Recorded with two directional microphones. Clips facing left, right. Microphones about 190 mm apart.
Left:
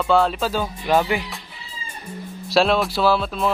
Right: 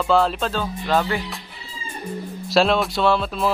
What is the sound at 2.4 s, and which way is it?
Speech, centre (ahead or behind).